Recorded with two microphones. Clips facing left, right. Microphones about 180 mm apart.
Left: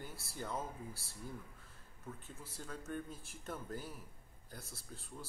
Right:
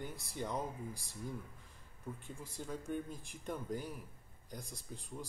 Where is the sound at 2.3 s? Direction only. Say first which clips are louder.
Right 4 dB; 10° right (ahead or behind).